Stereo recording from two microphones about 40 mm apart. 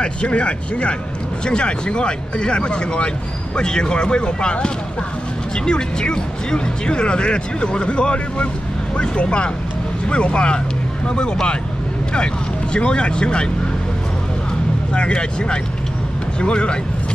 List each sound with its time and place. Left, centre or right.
0.0 s speech: left
12.7 s speech: left
15.0 s speech: left